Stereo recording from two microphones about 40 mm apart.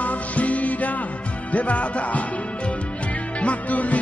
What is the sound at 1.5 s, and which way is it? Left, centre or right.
Speech, left.